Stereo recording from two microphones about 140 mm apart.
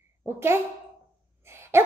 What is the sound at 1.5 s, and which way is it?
Dog, 15° right (ahead or behind).